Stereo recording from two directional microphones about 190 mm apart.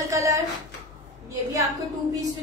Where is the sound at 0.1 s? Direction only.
15° right (ahead or behind).